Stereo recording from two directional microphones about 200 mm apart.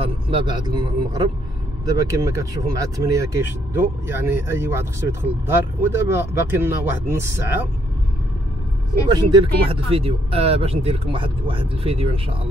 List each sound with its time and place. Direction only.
0.0 s a man's voice: 25° right (ahead or behind)
9.1 s speech: 25° right (ahead or behind)